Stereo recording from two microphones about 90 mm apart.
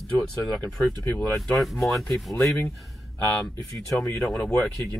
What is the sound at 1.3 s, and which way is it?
Speech, centre (ahead or behind).